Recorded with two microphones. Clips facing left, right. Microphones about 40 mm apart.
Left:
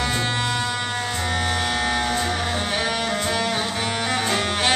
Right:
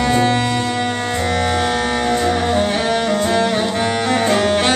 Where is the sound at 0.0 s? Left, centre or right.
Centre.